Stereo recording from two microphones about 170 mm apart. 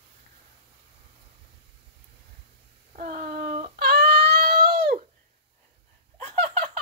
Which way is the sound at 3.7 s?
65° right (ahead or behind).